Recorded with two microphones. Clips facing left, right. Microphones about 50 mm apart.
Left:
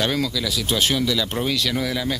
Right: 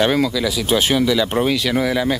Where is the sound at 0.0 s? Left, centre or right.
Centre.